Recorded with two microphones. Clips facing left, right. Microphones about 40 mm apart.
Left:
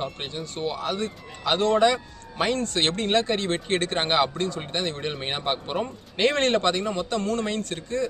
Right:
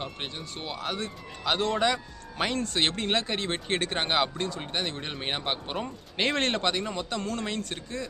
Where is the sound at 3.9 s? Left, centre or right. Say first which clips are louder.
Left 4 dB; centre.